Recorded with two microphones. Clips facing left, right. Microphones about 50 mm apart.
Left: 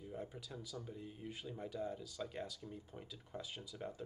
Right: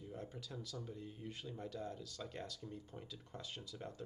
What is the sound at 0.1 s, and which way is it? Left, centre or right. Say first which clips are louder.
Speech: left 2 dB; centre.